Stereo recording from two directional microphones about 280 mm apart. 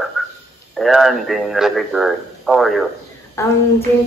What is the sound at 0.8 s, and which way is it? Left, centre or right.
A woman's voice, centre.